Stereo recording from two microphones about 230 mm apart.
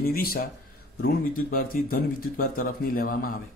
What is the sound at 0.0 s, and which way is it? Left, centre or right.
Speech, left.